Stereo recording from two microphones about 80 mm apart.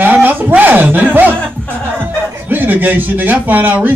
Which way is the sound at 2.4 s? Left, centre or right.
Right.